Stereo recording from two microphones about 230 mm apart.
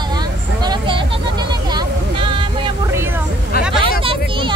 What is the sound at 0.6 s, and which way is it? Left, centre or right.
Vehicle, centre.